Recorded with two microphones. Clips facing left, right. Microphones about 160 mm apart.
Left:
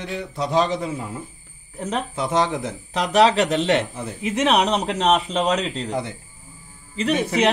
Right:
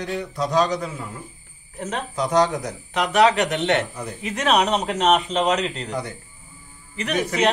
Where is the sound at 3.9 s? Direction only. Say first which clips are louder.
Left 4 dB; 25° left (ahead or behind).